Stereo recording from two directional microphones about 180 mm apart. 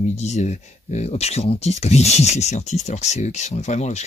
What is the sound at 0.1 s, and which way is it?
Speech, 40° left (ahead or behind).